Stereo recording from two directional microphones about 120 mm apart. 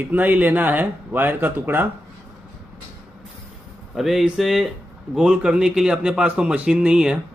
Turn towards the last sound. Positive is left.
turn(degrees=-5)  # may be behind; listen again after turning